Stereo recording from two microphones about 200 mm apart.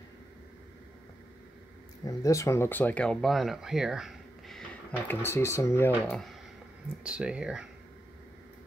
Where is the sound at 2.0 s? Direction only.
15° left (ahead or behind).